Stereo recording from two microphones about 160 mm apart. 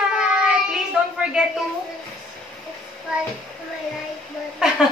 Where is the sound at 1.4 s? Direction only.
5° right (ahead or behind).